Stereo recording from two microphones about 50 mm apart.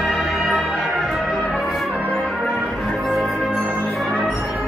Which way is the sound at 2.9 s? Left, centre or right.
Centre.